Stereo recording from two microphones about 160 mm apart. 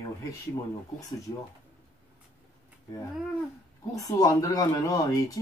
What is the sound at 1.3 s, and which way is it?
Speech, 30° left (ahead or behind).